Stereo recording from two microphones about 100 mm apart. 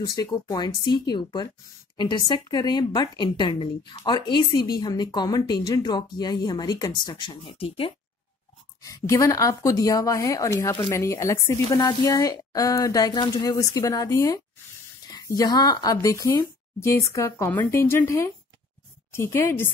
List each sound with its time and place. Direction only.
0.0 s a woman's voice: 35° left (ahead or behind); by 7.9 s 65° left (ahead or behind)
8.8 s a woman's voice: 35° left (ahead or behind)